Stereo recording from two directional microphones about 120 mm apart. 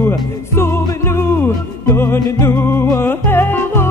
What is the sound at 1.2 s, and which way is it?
Music, 20° left (ahead or behind).